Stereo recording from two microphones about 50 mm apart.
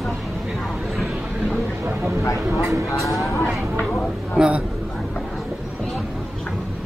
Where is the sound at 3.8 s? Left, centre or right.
Centre.